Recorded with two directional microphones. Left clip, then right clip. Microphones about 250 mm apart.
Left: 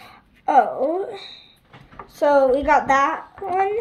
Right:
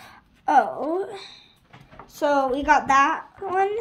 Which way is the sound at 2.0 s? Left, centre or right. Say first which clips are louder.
Left 5 dB; right.